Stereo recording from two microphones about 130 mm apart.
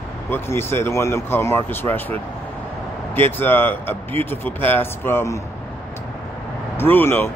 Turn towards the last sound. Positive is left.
turn(degrees=15)  # may be behind; listen again after turning